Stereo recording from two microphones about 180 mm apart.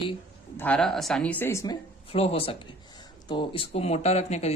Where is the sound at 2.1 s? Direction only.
35° left (ahead or behind).